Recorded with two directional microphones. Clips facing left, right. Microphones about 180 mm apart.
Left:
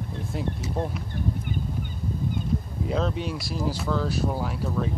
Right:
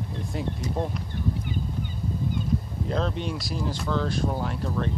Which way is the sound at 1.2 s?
45° left (ahead or behind).